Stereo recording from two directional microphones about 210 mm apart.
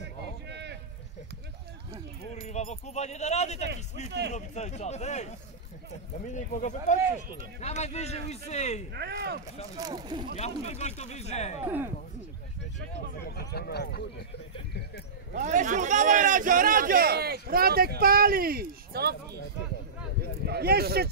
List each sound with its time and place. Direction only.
0.0 s a sound: 55° right (ahead or behind)
2.3 s speech: 30° left (ahead or behind)
8.9 s a man's voice: 50° right (ahead or behind)
9.8 s speech: 20° right (ahead or behind)
10.3 s speech: 30° left (ahead or behind)
11.6 s speech: 10° right (ahead or behind)
13.2 s a sound: 50° left (ahead or behind)
15.3 s a man's voice: 35° right (ahead or behind)
20.2 s a sound: 50° right (ahead or behind)